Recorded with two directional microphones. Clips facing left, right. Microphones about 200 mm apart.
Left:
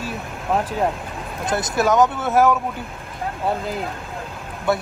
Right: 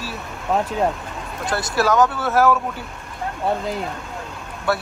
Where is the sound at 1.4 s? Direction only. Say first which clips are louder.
Left 1 dB; 20° left (ahead or behind).